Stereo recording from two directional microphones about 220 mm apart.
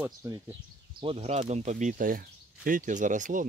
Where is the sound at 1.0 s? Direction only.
30° right (ahead or behind).